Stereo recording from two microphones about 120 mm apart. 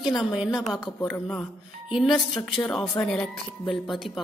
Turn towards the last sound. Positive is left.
turn(degrees=0)  # may be behind; listen again after turning